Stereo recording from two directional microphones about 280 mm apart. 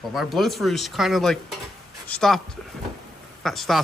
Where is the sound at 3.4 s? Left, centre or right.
Centre.